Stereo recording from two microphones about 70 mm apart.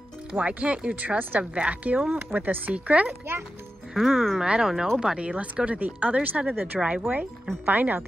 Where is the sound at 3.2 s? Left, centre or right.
Right.